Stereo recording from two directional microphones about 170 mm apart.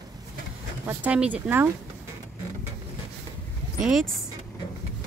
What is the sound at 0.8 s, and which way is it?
Speech, 10° right (ahead or behind).